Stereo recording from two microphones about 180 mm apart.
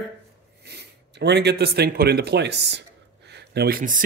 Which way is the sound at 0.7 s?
65° right (ahead or behind).